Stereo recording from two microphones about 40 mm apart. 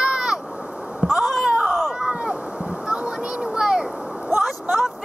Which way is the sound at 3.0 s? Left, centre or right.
Right.